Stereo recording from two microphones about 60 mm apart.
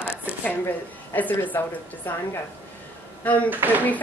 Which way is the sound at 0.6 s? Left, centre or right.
Left.